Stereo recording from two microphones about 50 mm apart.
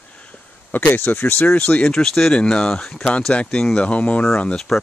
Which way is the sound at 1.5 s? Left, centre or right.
Left.